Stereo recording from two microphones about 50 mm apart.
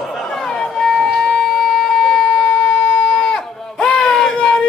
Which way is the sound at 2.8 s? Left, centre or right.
Centre.